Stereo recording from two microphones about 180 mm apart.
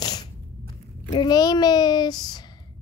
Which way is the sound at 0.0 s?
25° left (ahead or behind).